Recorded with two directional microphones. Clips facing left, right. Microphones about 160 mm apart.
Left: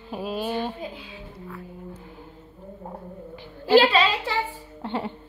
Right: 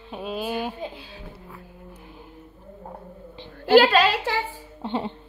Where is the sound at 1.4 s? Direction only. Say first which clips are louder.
Left 5 dB; 15° right (ahead or behind).